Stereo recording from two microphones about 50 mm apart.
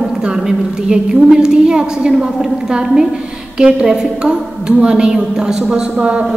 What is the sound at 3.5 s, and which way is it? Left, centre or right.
A woman's voice, right.